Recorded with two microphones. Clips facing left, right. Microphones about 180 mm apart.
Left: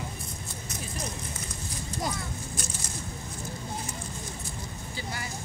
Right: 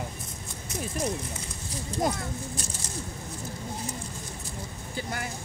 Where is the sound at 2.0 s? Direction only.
50° right (ahead or behind).